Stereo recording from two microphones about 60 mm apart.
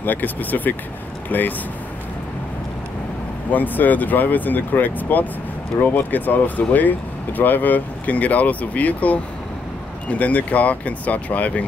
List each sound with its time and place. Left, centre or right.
0.0 s speech: left
3.5 s speech: left